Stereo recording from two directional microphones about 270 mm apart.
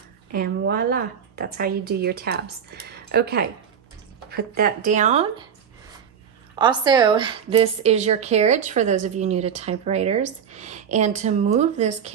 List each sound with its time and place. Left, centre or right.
0.3 s a woman's voice: right
6.5 s a woman's voice: centre